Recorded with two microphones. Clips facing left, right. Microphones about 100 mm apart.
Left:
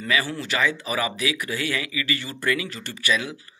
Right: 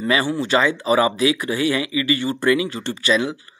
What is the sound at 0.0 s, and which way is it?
Speech, 30° right (ahead or behind).